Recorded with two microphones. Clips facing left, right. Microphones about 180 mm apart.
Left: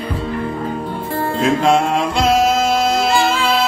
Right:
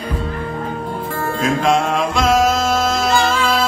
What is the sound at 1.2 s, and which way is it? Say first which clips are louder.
Music: left 3 dB; 25° left (ahead or behind).